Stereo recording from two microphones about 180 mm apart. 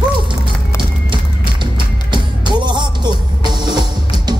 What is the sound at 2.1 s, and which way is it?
Music, 25° right (ahead or behind).